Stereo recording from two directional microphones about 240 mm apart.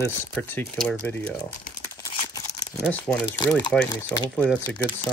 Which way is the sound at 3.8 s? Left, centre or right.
Centre.